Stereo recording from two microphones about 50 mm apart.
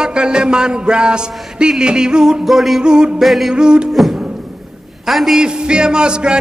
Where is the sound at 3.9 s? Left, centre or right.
Centre.